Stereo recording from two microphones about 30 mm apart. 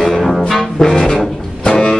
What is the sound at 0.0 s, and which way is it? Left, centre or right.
Brass instrument, centre.